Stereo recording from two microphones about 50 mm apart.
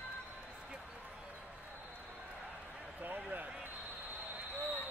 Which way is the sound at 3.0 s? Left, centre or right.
Right.